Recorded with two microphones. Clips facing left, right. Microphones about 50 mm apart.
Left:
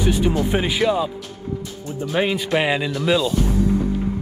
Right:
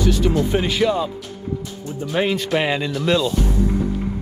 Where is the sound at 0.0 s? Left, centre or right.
Centre.